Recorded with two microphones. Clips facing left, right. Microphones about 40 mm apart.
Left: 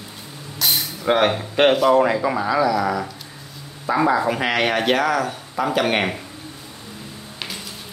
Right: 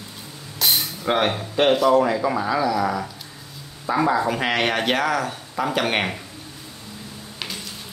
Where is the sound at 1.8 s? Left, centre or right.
Left.